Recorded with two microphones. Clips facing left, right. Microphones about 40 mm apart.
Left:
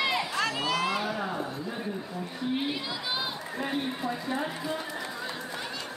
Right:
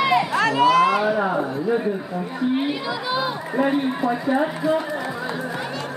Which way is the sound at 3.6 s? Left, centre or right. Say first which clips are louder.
Right 11 dB; right.